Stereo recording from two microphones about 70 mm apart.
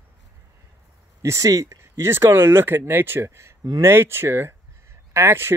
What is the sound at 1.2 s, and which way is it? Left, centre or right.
Speech, right.